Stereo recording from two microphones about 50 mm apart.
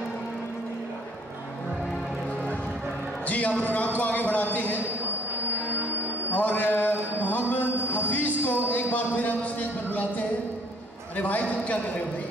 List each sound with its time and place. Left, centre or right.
3.3 s a man's voice: left
6.3 s a man's voice: left